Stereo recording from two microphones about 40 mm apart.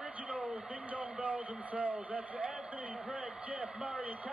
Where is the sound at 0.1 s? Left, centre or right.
Right.